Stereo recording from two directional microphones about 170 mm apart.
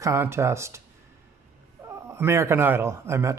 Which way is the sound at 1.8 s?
15° right (ahead or behind).